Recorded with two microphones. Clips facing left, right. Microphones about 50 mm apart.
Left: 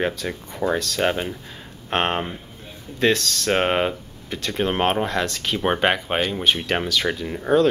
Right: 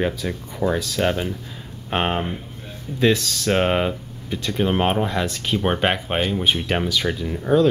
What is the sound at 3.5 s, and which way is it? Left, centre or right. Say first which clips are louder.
Speech: right 1 dB; centre.